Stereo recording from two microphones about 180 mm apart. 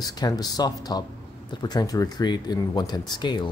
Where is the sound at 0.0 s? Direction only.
20° left (ahead or behind).